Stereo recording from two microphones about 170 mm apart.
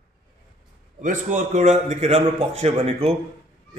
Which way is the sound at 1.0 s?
50° right (ahead or behind).